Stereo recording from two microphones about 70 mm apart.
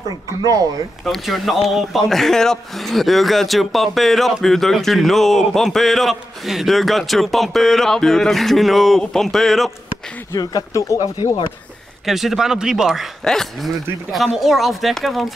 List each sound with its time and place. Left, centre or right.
0.4 s speech: right
1.0 s speech: centre
10.3 s speech: left
10.7 s speech: left
12.1 s speech: centre